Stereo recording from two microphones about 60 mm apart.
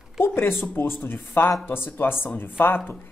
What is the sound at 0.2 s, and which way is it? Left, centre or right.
Speech, left.